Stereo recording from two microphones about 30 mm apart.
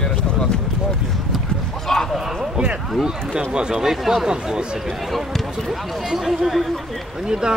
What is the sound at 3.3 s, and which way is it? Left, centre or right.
Speech, right.